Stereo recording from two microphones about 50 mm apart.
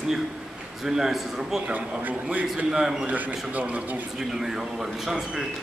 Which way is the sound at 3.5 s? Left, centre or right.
Right.